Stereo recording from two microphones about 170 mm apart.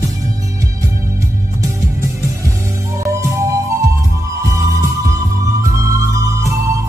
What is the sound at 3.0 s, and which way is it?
Music, 15° right (ahead or behind).